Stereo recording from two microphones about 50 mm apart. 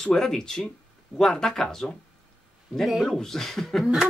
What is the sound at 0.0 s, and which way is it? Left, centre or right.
Speech, centre.